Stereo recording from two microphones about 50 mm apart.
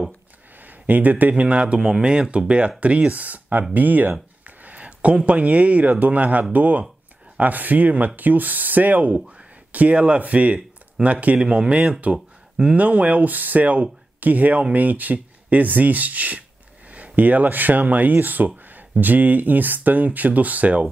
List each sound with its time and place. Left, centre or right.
0.6 s a sound: right
1.3 s speech: right
1.8 s speech: centre